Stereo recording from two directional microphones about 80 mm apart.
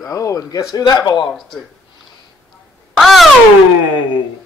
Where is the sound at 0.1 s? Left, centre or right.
Left.